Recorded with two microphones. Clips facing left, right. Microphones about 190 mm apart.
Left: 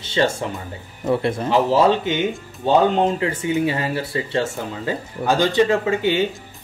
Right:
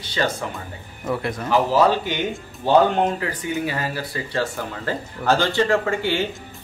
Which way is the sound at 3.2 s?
25° left (ahead or behind).